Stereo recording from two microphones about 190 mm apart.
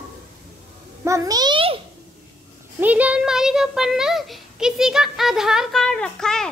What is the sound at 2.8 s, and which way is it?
A child's voice, 5° right (ahead or behind).